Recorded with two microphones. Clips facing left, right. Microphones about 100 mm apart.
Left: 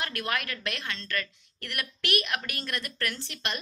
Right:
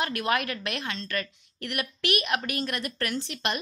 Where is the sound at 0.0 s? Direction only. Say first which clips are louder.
Right 5 dB; 20° right (ahead or behind).